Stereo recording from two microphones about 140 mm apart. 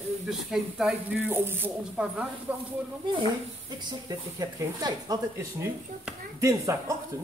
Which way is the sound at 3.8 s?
30° right (ahead or behind).